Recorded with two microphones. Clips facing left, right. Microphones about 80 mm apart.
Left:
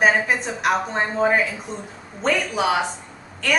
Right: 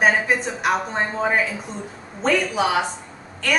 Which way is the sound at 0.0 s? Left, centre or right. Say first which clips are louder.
Even; centre.